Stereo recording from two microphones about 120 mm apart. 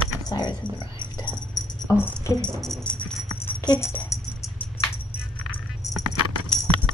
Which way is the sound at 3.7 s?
20° left (ahead or behind).